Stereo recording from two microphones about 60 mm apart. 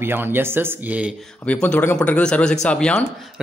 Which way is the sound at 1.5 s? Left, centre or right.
Left.